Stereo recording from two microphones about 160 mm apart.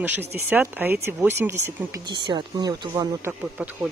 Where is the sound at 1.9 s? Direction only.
30° right (ahead or behind).